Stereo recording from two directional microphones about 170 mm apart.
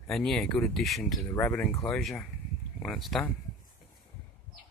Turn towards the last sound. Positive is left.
turn(degrees=0)  # may be behind; listen again after turning